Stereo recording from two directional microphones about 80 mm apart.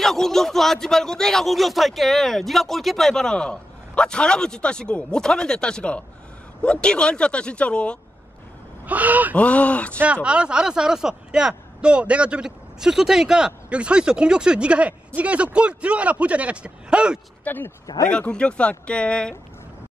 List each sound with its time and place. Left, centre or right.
0.0 s speech: centre
8.8 s speech: centre
9.3 s speech: centre
10.0 s speech: centre
17.5 s speech: left
18.1 s speech: centre